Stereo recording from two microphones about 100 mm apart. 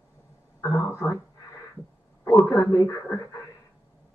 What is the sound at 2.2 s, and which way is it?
Speech, 30° left (ahead or behind).